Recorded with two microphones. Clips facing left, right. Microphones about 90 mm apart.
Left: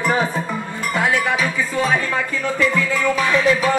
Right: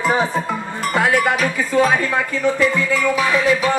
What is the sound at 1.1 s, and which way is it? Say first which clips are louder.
Music: right 2 dB; 60° right (ahead or behind).